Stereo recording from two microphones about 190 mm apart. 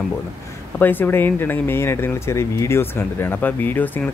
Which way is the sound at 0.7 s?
10° left (ahead or behind).